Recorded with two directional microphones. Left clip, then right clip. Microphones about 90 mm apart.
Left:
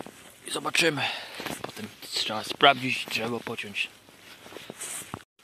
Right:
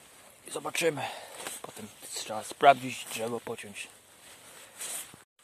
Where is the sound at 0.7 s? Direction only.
30° right (ahead or behind).